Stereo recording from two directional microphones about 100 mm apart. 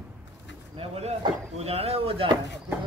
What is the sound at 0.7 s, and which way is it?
Speech, 90° right.